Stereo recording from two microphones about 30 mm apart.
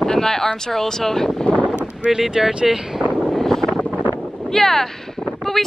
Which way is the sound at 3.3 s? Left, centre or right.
Centre.